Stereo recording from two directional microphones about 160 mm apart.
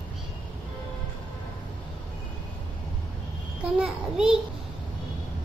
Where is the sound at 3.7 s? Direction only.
5° right (ahead or behind).